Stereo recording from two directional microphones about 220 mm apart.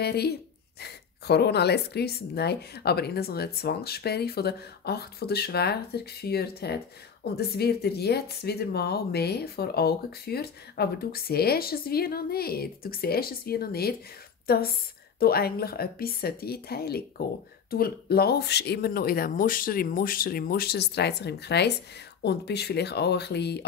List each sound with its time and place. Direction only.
0.0 s speech: 45° left (ahead or behind)